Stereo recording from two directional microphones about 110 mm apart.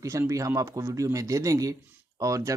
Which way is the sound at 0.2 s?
30° right (ahead or behind).